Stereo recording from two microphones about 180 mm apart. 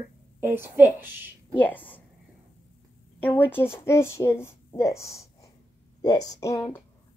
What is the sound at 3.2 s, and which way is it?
A woman's voice, 10° left (ahead or behind).